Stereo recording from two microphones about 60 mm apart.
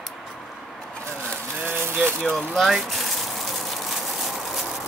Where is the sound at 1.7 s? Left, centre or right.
Right.